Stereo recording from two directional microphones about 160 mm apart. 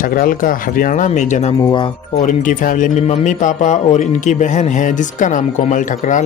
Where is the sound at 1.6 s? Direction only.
30° left (ahead or behind).